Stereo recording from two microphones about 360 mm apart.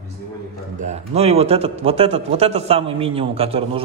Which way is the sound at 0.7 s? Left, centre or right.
Centre.